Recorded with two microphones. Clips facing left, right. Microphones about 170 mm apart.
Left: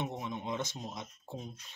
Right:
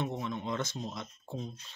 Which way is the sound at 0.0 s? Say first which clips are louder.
Right 3 dB; 15° left (ahead or behind).